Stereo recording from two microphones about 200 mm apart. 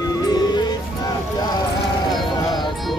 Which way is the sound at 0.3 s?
20° left (ahead or behind).